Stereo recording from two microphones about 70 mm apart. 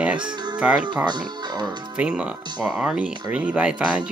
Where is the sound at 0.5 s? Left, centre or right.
Centre.